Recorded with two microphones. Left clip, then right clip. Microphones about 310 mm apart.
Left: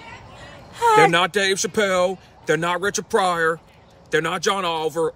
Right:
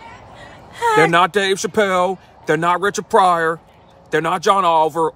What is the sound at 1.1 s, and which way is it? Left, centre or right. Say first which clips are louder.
Speech: right 4 dB; centre.